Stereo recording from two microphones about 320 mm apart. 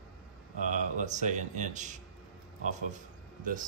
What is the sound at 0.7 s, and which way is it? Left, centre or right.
Speech, right.